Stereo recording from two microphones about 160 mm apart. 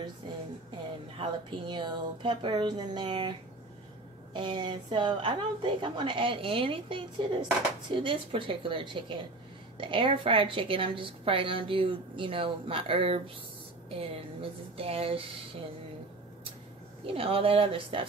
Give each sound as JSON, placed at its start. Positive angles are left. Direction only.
{"t": 1.1, "sound": "a woman's voice", "side_deg": -30}
{"t": 17.0, "sound": "a woman's voice", "side_deg": -35}